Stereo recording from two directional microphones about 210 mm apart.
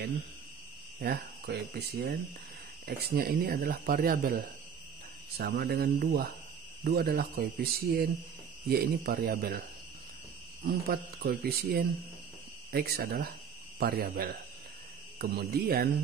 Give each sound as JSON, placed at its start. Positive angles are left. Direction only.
{"t": 1.0, "sound": "speech", "side_deg": -50}
{"t": 8.6, "sound": "speech", "side_deg": -45}
{"t": 10.6, "sound": "speech", "side_deg": -45}